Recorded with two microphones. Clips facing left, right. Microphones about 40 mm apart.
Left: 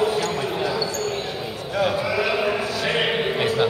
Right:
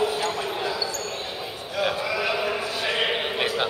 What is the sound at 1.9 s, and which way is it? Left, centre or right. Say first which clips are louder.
Sheep: left 3 dB; centre.